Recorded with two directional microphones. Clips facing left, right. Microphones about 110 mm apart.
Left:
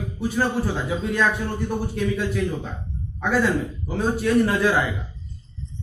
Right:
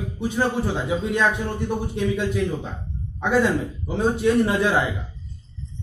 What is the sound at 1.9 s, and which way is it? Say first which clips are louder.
Speech: right 2 dB; 20° right (ahead or behind).